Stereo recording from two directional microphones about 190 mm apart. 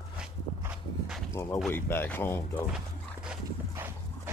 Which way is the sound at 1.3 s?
15° left (ahead or behind).